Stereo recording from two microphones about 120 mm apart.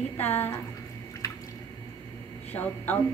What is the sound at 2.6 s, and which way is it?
Speech, 15° left (ahead or behind).